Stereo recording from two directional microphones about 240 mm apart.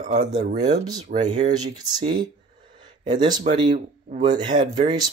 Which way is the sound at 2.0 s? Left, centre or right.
Centre.